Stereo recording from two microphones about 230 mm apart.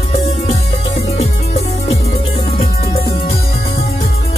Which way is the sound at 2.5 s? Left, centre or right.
Left.